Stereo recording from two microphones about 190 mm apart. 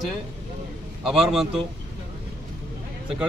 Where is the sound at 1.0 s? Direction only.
Centre (ahead or behind).